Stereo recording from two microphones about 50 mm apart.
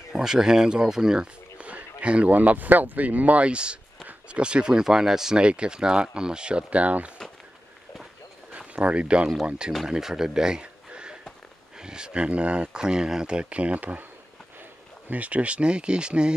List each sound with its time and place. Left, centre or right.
0.1 s speech: centre
1.6 s speech: right
8.5 s speech: right
9.7 s speech: centre; by 14.0 s right
15.0 s speech: right